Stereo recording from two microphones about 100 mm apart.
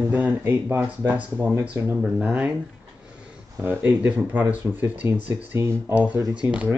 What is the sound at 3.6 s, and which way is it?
Speech, 20° right (ahead or behind).